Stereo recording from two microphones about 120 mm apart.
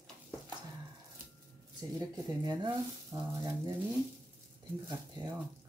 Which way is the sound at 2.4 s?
35° right (ahead or behind).